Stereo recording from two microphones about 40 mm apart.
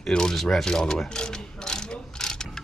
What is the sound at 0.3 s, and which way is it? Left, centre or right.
Speech, centre.